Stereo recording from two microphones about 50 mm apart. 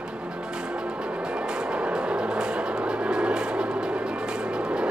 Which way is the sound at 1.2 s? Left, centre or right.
Centre.